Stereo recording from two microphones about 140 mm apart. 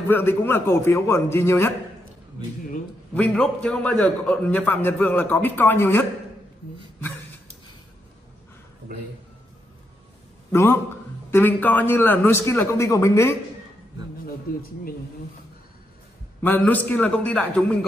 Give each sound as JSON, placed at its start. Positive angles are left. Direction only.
{"t": 0.1, "sound": "a man's voice", "side_deg": 15}
{"t": 3.2, "sound": "a man's voice", "side_deg": 10}
{"t": 10.5, "sound": "a man's voice", "side_deg": 20}
{"t": 14.5, "sound": "speech", "side_deg": 90}
{"t": 16.4, "sound": "a man's voice", "side_deg": 10}